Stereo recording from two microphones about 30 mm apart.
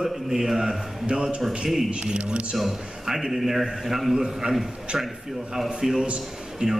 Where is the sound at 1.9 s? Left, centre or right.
Right.